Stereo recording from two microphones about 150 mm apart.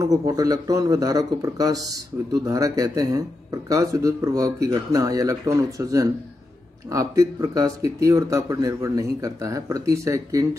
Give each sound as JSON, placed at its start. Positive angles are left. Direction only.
{"t": 0.0, "sound": "speech", "side_deg": -20}